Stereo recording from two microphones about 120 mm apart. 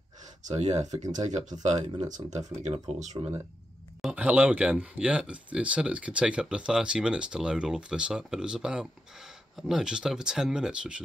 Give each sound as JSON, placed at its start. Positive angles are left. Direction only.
{"t": 0.4, "sound": "speech", "side_deg": -70}
{"t": 1.1, "sound": "speech", "side_deg": -90}
{"t": 2.3, "sound": "speech", "side_deg": -70}
{"t": 4.0, "sound": "speech", "side_deg": -10}